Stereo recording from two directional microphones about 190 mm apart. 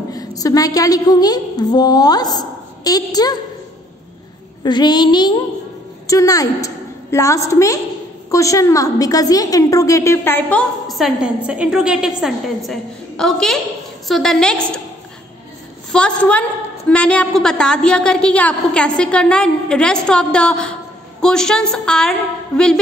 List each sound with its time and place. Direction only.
0.1 s a sound: 20° left (ahead or behind)
4.6 s a child's voice: 20° left (ahead or behind); by 14.8 s 5° left (ahead or behind)
15.9 s a woman's voice: 5° left (ahead or behind)